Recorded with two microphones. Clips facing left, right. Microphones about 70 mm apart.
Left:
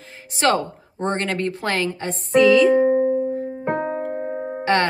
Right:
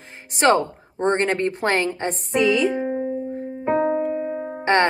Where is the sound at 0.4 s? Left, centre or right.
Right.